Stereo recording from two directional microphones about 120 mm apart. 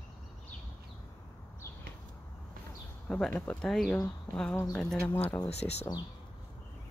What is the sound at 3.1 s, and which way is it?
Speech, 5° left (ahead or behind).